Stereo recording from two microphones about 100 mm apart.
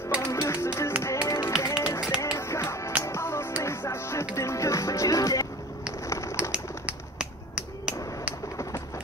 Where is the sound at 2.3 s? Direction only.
30° left (ahead or behind).